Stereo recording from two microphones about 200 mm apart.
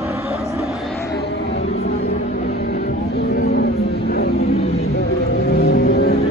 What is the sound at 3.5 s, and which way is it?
Vehicle, 55° left (ahead or behind).